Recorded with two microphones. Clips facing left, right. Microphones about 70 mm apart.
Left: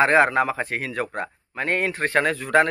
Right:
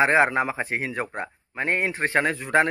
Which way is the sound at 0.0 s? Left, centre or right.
Centre.